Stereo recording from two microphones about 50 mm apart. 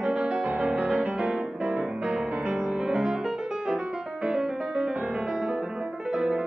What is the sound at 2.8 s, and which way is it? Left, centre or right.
Music, centre.